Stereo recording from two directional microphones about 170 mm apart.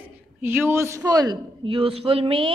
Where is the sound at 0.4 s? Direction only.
10° right (ahead or behind).